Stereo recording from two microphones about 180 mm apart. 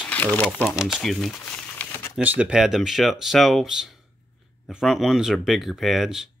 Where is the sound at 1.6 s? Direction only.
10° left (ahead or behind).